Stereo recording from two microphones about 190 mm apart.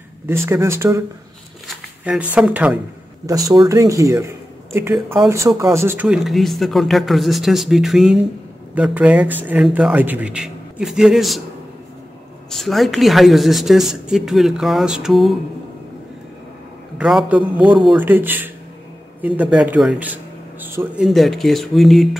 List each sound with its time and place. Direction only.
0.3 s speech: 15° right (ahead or behind)
2.3 s speech: 5° right (ahead or behind)
3.3 s speech: 20° right (ahead or behind)
5.6 s a woman's voice: 15° right (ahead or behind)
12.4 s a woman's voice: centre (ahead or behind)
17.0 s a woman's voice: 5° right (ahead or behind)